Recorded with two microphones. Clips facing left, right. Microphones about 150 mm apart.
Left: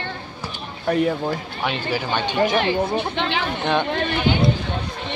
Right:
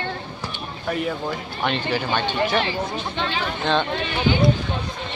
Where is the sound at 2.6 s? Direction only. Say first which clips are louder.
Left 5 dB; 60° left (ahead or behind).